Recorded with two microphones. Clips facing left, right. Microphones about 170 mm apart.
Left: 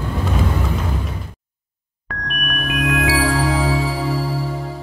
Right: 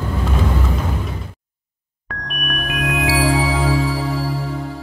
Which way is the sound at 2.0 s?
Centre (ahead or behind).